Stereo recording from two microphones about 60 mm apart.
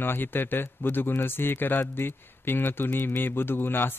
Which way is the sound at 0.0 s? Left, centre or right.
Left.